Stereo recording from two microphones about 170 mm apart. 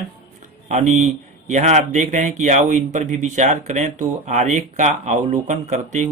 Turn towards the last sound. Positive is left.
turn(degrees=-40)  # may be behind; listen again after turning